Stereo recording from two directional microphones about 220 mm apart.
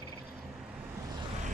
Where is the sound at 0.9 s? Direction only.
15° right (ahead or behind).